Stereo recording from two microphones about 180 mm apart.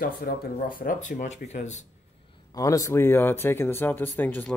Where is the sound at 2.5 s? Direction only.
20° left (ahead or behind).